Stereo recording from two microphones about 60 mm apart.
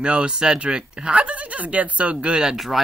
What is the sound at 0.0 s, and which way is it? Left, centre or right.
Speech, centre.